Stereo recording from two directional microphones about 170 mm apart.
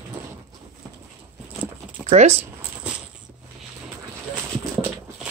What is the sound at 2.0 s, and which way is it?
Zipper, 40° right (ahead or behind).